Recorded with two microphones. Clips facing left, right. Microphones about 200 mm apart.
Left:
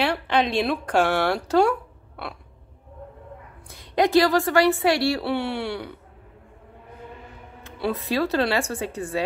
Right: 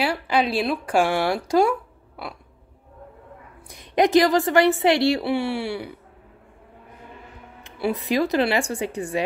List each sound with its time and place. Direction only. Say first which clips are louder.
0.0 s speech: even; 10° right (ahead or behind)
3.6 s a woman's voice: right 2 dB; 20° right (ahead or behind)
7.6 s speech: right 2 dB; 15° right (ahead or behind)